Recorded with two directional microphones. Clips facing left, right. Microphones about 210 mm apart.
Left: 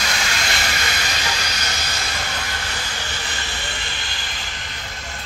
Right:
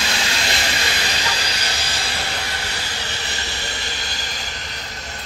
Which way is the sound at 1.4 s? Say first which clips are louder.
Right 1 dB; 30° right (ahead or behind).